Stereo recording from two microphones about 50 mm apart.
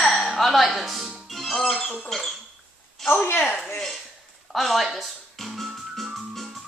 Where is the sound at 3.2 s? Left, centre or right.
Left.